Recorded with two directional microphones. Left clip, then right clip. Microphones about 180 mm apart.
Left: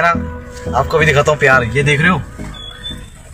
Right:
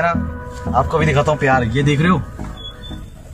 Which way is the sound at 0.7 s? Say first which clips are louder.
Left 4 dB; centre (ahead or behind).